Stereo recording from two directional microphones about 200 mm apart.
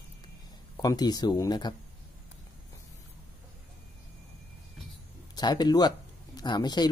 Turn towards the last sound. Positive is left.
turn(degrees=20)  # may be behind; listen again after turning